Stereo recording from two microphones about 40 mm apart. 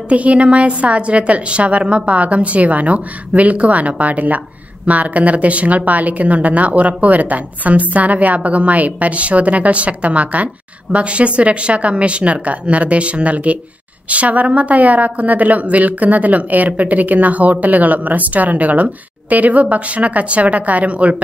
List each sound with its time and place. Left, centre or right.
0.1 s a woman's voice: right